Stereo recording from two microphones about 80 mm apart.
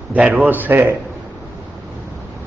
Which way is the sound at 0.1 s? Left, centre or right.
Centre.